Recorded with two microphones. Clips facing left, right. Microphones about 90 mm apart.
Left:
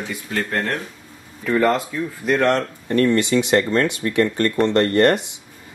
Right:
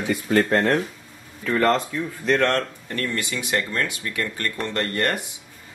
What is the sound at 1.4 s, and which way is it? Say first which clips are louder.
Speech: left 2 dB; 5° left (ahead or behind).